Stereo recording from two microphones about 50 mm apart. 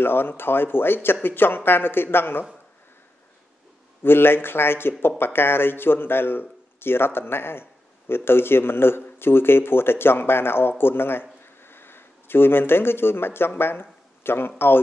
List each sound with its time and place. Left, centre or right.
0.0 s speech: left
4.0 s speech: left
11.4 s a sound: left
13.6 s a man's voice: left